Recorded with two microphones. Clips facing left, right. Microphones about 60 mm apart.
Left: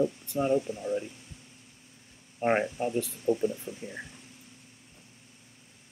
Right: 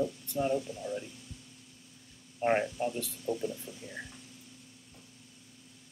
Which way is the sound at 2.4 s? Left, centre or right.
Left.